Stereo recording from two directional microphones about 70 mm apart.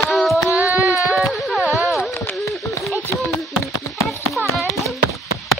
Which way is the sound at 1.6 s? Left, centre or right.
Right.